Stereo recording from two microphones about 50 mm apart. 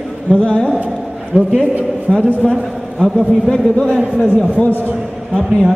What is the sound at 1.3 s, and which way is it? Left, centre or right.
Speech, right.